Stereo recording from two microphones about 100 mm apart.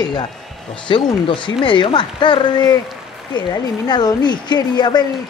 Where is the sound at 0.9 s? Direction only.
55° left (ahead or behind).